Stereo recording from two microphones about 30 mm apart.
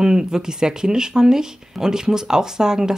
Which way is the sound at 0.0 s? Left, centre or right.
Right.